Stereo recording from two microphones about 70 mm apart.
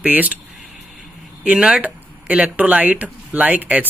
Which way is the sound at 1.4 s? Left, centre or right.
Centre.